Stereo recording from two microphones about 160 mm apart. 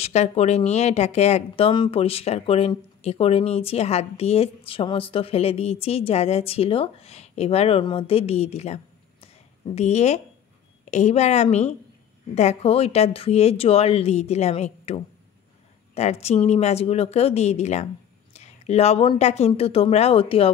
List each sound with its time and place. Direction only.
0.0 s speech: 45° left (ahead or behind)